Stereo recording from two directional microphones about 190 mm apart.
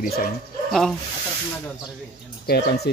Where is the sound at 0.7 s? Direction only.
Centre (ahead or behind).